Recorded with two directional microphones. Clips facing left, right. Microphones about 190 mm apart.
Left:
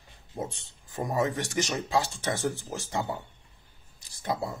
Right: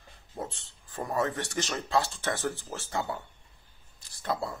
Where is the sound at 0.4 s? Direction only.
15° left (ahead or behind).